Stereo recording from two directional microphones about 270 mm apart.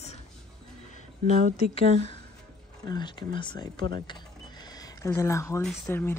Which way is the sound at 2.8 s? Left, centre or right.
Centre.